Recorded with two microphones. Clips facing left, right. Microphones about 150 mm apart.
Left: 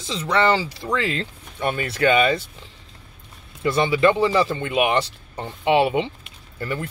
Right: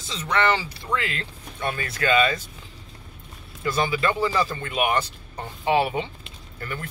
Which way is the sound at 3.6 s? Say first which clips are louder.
Left 6 dB; 25° left (ahead or behind).